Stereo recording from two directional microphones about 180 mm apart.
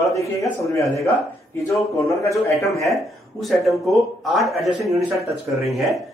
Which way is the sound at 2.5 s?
Centre (ahead or behind).